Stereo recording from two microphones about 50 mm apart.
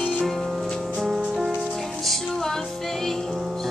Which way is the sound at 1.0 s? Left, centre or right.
Centre.